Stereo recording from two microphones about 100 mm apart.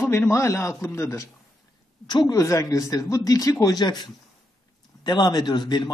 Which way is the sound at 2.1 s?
45° left (ahead or behind).